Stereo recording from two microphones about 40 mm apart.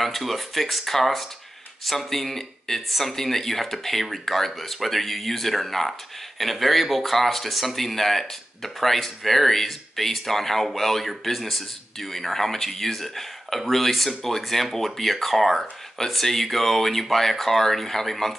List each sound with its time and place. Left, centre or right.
0.0 s speech: centre